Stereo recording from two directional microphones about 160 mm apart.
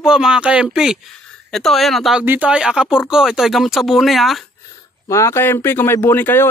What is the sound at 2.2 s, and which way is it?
Speech, 10° right (ahead or behind).